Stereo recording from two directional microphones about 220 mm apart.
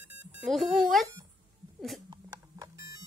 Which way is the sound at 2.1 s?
15° right (ahead or behind).